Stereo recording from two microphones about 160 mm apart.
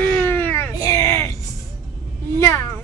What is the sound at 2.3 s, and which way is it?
Speech, 15° left (ahead or behind).